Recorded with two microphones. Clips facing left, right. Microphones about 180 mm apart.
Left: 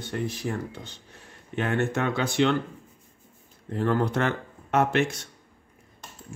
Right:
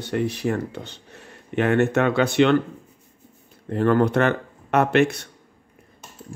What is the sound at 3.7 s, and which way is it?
Speech, 65° right (ahead or behind).